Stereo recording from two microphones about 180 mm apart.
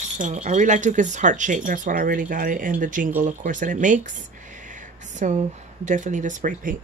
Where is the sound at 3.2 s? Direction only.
45° right (ahead or behind).